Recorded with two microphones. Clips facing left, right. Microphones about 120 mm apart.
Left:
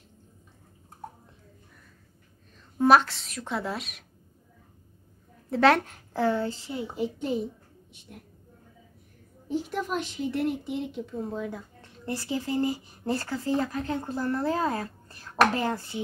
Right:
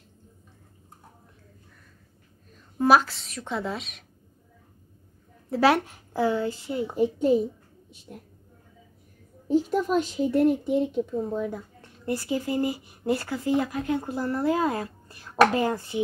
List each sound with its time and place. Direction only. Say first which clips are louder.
2.8 s a woman's voice: even; centre (ahead or behind)
5.5 s speech: even; 5° right (ahead or behind)
6.8 s a woman's voice: right 8 dB; 45° right (ahead or behind)
9.5 s speech: right 7 dB; 40° right (ahead or behind)
11.1 s a woman's voice: right 4 dB; 5° right (ahead or behind)